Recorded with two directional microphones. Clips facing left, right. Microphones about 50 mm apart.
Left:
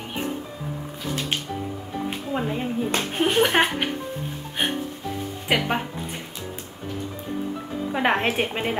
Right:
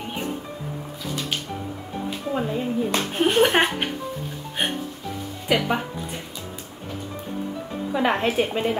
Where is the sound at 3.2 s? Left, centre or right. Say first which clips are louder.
Right 1 dB; centre.